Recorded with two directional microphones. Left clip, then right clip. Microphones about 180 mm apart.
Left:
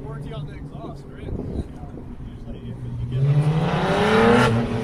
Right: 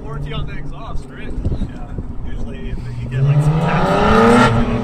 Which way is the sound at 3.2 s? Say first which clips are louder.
Right 5 dB; 40° left (ahead or behind).